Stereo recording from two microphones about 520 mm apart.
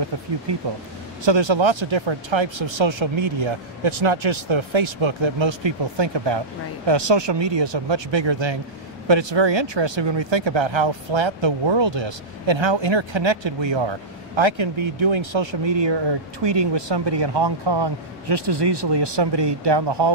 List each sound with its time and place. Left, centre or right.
0.5 s speech: right